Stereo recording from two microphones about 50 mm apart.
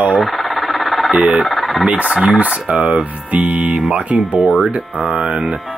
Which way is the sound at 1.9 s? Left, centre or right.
Right.